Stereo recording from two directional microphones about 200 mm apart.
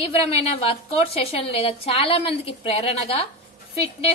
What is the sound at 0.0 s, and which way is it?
A woman's voice, 30° left (ahead or behind).